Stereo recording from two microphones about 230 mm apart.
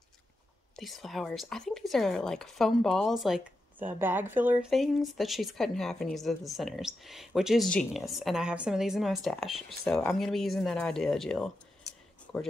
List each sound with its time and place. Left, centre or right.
0.7 s speech: centre